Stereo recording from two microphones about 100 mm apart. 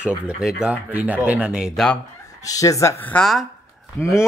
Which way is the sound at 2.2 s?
35° left (ahead or behind).